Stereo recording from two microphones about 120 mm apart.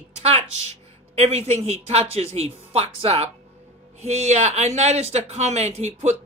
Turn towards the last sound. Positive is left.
turn(degrees=-65)  # may be behind; listen again after turning